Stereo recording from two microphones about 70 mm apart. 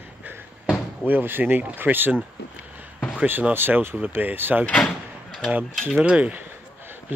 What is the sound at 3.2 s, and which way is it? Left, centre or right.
Speech, right.